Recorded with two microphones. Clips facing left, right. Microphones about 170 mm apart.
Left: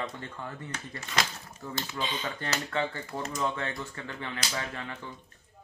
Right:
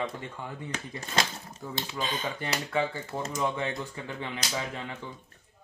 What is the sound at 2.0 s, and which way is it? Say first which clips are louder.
Speech: right 2 dB; 45° right (ahead or behind).